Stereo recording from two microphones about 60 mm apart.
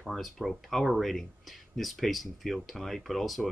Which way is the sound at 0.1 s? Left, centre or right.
Centre.